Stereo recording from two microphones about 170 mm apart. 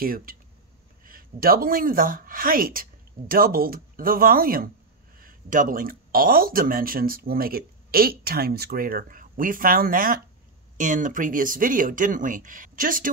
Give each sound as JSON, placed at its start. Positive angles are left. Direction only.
{"t": 0.0, "sound": "speech", "side_deg": -55}